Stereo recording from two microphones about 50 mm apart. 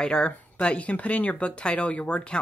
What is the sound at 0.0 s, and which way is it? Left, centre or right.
Speech, centre.